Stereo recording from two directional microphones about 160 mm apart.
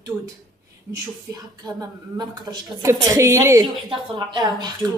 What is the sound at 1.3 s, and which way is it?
A woman's voice, 25° right (ahead or behind).